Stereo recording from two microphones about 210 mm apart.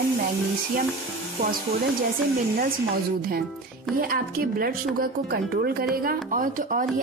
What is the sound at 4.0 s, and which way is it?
Speech, 45° right (ahead or behind).